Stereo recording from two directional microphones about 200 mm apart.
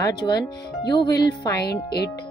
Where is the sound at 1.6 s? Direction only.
55° left (ahead or behind).